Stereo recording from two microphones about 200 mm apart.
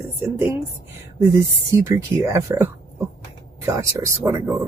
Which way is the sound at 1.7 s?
15° right (ahead or behind).